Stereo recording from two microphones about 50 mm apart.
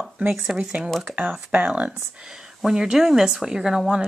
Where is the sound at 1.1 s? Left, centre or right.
Right.